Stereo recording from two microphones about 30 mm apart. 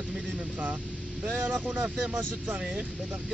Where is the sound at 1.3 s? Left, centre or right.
Right.